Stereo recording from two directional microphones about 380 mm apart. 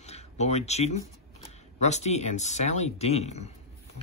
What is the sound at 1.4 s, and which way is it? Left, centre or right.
Speech, centre.